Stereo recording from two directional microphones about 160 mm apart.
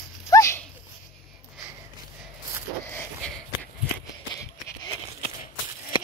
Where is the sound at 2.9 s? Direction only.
10° left (ahead or behind).